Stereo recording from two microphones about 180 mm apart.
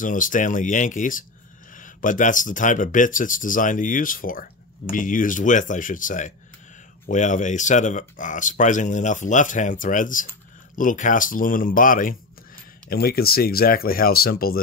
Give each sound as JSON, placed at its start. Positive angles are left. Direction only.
{"t": 0.0, "sound": "speech", "side_deg": 45}